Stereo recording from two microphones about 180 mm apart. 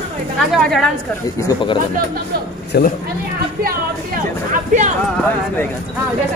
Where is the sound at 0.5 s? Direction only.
Centre (ahead or behind).